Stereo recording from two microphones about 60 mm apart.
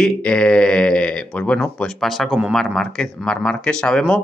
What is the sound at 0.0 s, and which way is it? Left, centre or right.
Speech, centre.